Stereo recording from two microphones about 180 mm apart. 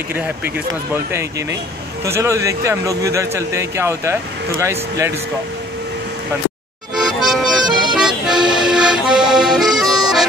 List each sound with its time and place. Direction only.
2.0 s speech: 15° right (ahead or behind)
7.0 s accordion: centre (ahead or behind)